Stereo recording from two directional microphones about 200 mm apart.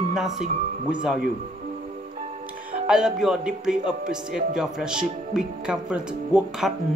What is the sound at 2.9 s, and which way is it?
Speech, 5° right (ahead or behind).